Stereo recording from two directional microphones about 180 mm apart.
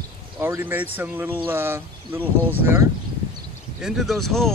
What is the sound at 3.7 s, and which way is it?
Speech, centre (ahead or behind).